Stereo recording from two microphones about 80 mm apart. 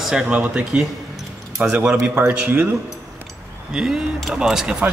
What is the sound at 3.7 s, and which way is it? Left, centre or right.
Speech, centre.